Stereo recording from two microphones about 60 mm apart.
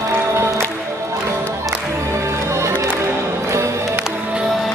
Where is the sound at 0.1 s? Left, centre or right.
Right.